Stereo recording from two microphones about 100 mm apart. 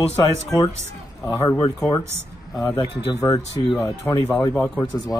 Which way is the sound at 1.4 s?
30° left (ahead or behind).